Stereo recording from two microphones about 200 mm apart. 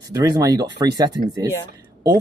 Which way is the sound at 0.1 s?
20° right (ahead or behind).